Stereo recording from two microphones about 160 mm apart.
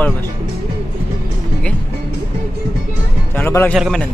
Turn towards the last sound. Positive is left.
turn(degrees=0)  # may be behind; listen again after turning